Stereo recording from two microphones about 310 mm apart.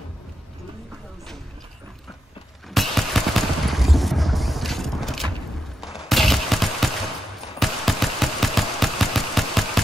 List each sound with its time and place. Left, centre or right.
2.7 s a sound: centre
5.8 s fusillade: centre
7.5 s engine: centre